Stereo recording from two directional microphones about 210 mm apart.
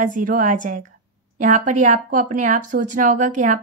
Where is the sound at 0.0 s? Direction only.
40° right (ahead or behind).